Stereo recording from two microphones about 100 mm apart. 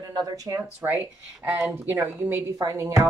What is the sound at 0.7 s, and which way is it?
Speech, 20° right (ahead or behind).